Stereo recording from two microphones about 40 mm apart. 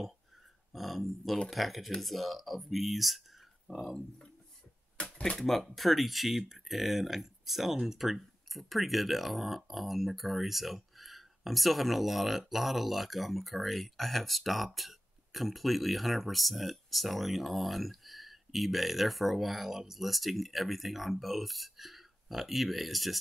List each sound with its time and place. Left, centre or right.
0.7 s speech: centre
5.0 s a sound: left
5.4 s speech: centre